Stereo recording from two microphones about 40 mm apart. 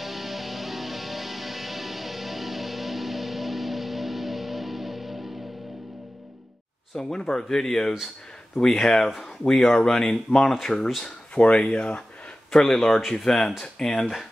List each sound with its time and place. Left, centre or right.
0.0 s music: centre
7.0 s speech: centre
11.5 s speech: left
12.4 s speech: centre